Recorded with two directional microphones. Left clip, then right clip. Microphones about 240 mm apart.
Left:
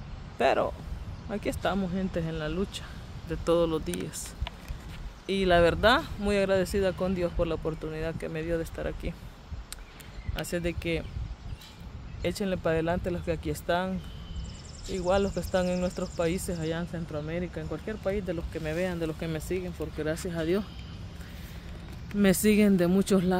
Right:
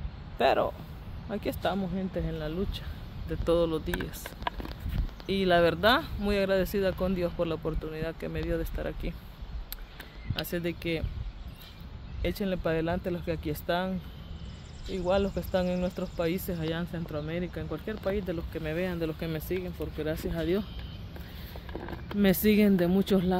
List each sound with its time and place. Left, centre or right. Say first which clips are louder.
0.4 s speech: even; centre
5.2 s speech: left 1 dB; centre
10.3 s speech: left 1 dB; centre
12.2 s speech: left 1 dB; centre
15.0 s speech: left 1 dB; centre
22.2 s speech: left 1 dB; centre